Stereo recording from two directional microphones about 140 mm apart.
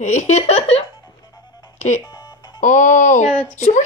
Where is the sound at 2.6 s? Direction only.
60° left (ahead or behind).